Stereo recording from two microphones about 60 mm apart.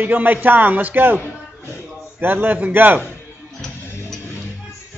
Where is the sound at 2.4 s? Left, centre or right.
Right.